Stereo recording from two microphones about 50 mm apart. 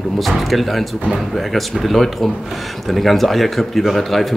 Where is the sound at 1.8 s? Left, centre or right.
Centre.